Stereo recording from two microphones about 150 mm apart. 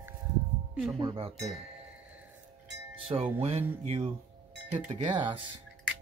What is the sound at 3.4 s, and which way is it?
Music, 45° right (ahead or behind).